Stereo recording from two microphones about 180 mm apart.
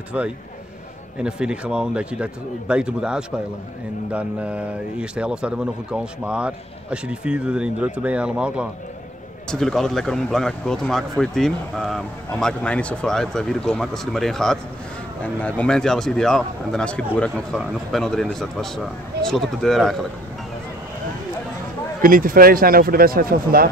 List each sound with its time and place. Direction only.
0.1 s speech: 5° right (ahead or behind)
22.0 s speech: 50° right (ahead or behind)